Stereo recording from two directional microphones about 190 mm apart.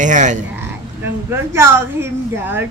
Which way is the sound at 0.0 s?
40° right (ahead or behind).